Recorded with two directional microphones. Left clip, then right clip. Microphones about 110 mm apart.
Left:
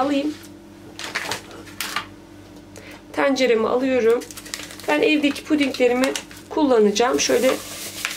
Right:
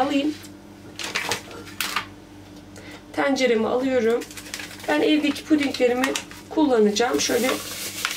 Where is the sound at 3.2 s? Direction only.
30° left (ahead or behind).